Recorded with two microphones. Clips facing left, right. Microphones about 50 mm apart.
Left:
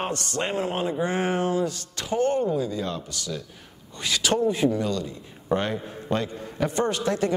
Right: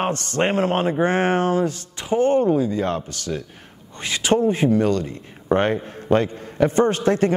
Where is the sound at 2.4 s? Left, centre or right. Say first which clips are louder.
Right 6 dB; right.